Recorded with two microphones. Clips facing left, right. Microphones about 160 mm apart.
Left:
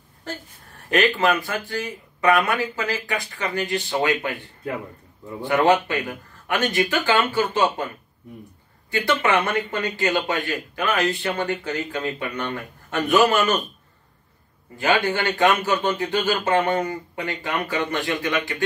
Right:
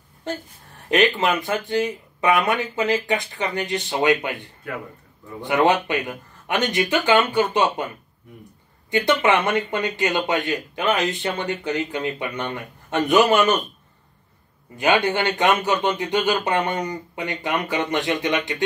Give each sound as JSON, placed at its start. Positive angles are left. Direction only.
{"t": 0.8, "sound": "speech", "side_deg": -20}
{"t": 5.4, "sound": "speech", "side_deg": -20}
{"t": 8.9, "sound": "speech", "side_deg": -20}
{"t": 14.8, "sound": "speech", "side_deg": -20}